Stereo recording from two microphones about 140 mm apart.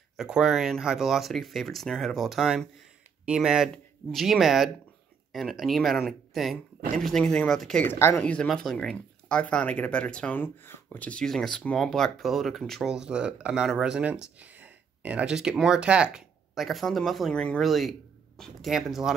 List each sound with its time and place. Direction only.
0.2 s speech: 5° right (ahead or behind)
7.9 s speech: 20° left (ahead or behind)
8.2 s speech: 5° left (ahead or behind)